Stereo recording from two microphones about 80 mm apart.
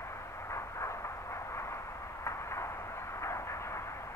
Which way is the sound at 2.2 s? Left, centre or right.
Left.